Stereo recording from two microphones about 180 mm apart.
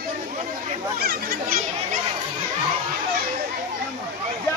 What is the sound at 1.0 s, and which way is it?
Children playing, 55° right (ahead or behind).